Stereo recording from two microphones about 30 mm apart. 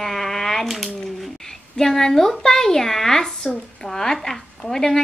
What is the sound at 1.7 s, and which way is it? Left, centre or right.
A child's voice, centre.